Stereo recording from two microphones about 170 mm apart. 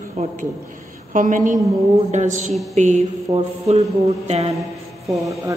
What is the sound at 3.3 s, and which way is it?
Speech, 20° right (ahead or behind).